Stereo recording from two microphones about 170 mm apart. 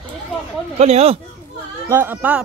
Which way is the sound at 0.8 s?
35° right (ahead or behind).